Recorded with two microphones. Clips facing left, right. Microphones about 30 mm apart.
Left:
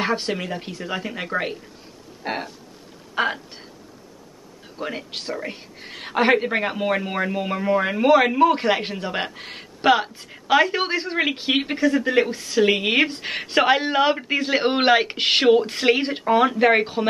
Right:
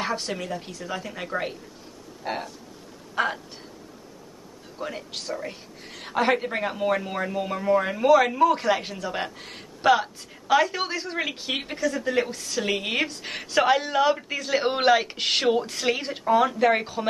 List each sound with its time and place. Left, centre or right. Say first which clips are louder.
0.0 s a woman's voice: left 5 dB; left
4.7 s a woman's voice: left 4 dB; left